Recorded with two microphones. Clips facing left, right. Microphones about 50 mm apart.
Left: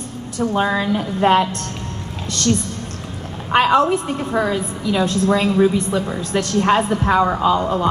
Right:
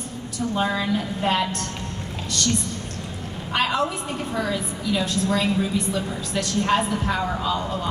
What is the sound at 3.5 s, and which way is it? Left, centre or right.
A woman's voice, left.